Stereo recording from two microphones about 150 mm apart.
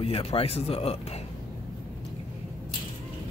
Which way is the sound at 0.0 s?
35° left (ahead or behind).